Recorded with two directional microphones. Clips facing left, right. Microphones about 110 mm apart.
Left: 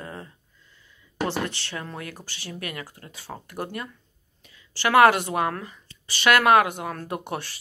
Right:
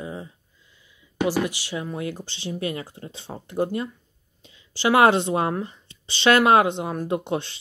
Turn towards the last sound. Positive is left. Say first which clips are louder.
# right 6 dB
turn(degrees=-20)  # may be behind; listen again after turning